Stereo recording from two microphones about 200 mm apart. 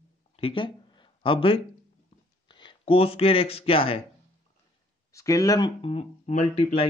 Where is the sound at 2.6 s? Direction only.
30° left (ahead or behind).